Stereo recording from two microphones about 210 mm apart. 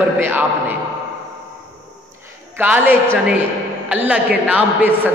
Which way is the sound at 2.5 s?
10° right (ahead or behind).